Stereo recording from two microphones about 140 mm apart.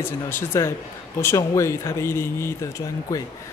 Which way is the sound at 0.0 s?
15° left (ahead or behind).